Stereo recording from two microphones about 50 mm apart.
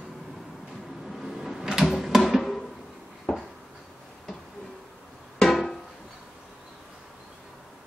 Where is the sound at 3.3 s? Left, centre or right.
Centre.